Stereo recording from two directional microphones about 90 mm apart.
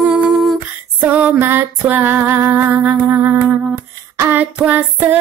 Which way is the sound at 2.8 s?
20° right (ahead or behind).